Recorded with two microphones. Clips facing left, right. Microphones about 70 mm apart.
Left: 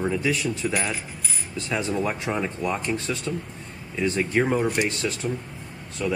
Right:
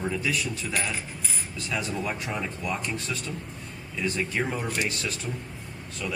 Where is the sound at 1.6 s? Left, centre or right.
Left.